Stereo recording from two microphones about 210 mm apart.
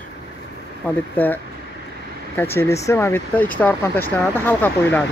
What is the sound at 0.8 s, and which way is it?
Speech, 10° left (ahead or behind).